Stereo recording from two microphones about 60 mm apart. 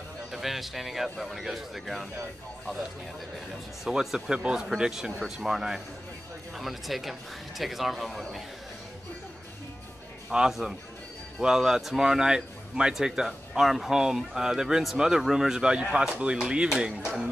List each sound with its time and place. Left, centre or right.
0.3 s a man's voice: centre
3.8 s a man's voice: centre
10.3 s a man's voice: centre